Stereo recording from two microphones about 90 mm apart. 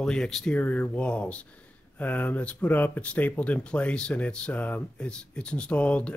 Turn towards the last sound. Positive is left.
turn(degrees=15)  # may be behind; listen again after turning